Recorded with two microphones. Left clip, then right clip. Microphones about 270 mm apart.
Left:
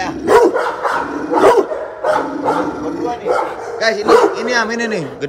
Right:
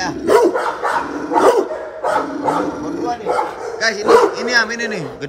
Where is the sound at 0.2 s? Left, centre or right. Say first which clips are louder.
Left 2 dB; centre.